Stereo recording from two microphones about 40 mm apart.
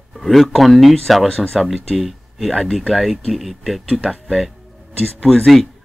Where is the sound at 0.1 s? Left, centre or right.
Centre.